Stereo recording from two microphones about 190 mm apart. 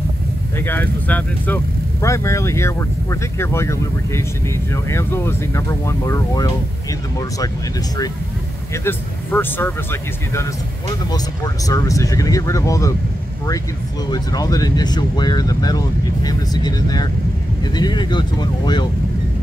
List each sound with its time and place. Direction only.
0.6 s speech: 10° left (ahead or behind)
8.7 s speech: 10° left (ahead or behind)
14.1 s speech: 20° left (ahead or behind)